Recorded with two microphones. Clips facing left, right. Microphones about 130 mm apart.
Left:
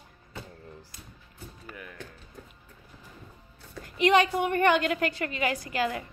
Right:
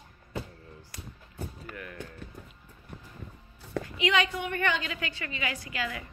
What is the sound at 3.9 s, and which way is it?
A woman's voice, 45° left (ahead or behind).